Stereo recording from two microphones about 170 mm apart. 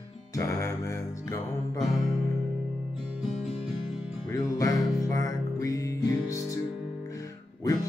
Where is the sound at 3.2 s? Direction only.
Centre (ahead or behind).